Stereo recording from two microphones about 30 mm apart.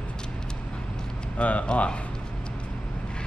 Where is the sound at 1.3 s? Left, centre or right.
Left.